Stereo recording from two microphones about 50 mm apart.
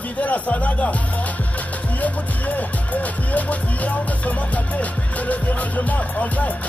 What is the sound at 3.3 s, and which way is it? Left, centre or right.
Music, left.